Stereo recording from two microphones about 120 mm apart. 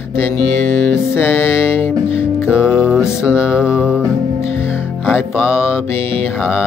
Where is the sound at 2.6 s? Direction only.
5° right (ahead or behind).